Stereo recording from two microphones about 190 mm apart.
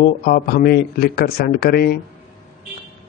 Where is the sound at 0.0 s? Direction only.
50° left (ahead or behind).